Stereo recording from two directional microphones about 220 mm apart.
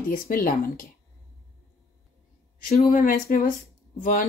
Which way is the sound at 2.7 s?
30° left (ahead or behind).